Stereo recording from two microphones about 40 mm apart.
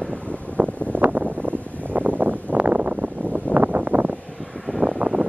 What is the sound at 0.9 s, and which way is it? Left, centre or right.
Wind noise, right.